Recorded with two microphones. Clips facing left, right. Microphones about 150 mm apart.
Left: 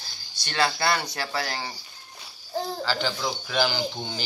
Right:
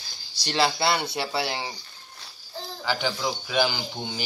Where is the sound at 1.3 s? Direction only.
20° right (ahead or behind).